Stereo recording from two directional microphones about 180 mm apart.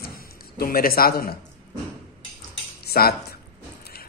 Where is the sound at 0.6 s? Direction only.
55° left (ahead or behind).